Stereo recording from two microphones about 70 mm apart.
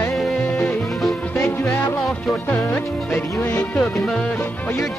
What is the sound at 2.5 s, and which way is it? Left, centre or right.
Music, left.